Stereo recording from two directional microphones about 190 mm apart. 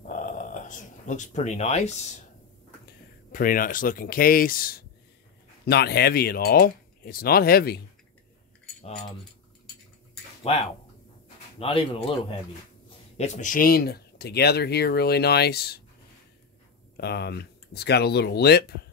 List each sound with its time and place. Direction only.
0.1 s speech: 45° left (ahead or behind)
3.3 s speech: 45° left (ahead or behind)
10.5 s speech: 30° left (ahead or behind)
13.2 s speech: 40° left (ahead or behind); by 15.8 s 55° left (ahead or behind)
16.9 s speech: 60° left (ahead or behind)